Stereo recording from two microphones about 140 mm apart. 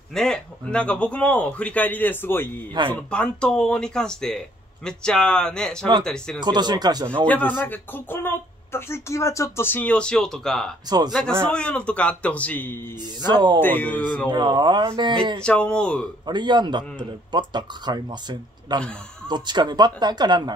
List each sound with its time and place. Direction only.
0.1 s a man's voice: 5° left (ahead or behind)
6.4 s speech: 30° right (ahead or behind)
7.2 s a man's voice: 10° left (ahead or behind)
10.9 s speech: 30° right (ahead or behind)
11.5 s a man's voice: 10° left (ahead or behind)
13.2 s speech: 30° right (ahead or behind)
13.6 s a man's voice: 15° left (ahead or behind)
14.3 s speech: 30° right (ahead or behind)
15.4 s a man's voice: 5° left (ahead or behind)
16.3 s speech: 30° right (ahead or behind)